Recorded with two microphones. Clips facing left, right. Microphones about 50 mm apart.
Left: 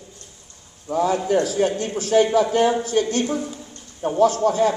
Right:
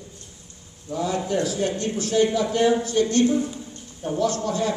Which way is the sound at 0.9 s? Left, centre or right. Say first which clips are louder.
Left 5 dB; left.